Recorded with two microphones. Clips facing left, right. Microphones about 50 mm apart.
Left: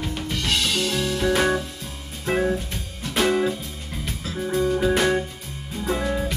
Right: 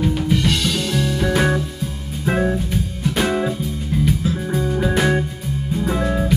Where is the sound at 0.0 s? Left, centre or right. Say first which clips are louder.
Right 9 dB; centre.